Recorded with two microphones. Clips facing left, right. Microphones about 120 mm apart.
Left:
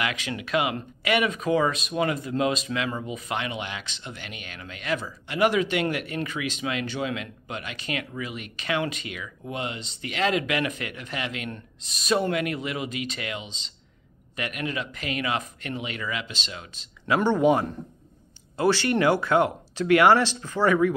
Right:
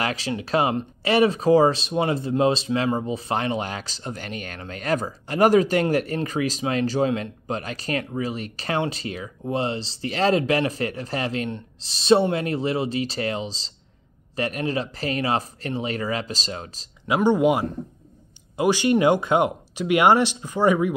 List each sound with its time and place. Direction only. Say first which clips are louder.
0.0 s speech: right 4 dB; 35° right (ahead or behind)
17.1 s speech: right 2 dB; 10° right (ahead or behind)